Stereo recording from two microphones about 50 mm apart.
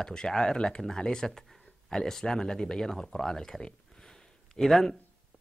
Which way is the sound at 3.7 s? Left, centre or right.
Centre.